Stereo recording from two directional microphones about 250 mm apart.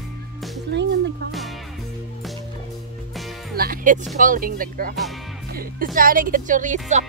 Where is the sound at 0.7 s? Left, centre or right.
Right.